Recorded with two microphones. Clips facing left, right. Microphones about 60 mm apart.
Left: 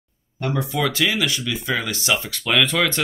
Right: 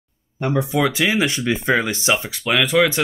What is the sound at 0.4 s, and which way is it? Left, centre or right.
Speech, right.